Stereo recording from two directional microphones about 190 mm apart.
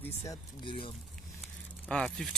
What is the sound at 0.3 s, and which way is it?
Speech, 25° left (ahead or behind).